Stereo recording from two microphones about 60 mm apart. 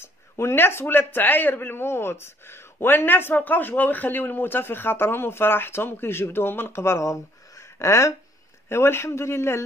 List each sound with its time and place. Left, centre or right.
0.0 s speech: left
8.6 s speech: left